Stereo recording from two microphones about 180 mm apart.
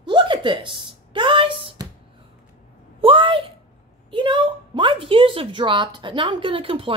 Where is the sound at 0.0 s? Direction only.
25° right (ahead or behind).